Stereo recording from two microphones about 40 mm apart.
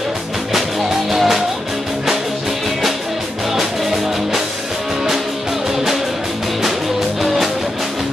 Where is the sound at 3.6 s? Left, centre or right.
Centre.